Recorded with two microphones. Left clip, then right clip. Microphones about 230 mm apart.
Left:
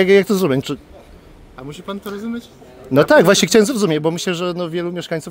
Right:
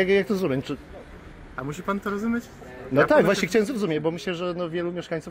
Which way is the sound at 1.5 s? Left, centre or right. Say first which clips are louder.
Right 1 dB; centre.